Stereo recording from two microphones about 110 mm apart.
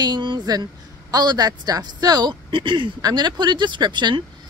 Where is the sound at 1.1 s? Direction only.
40° right (ahead or behind).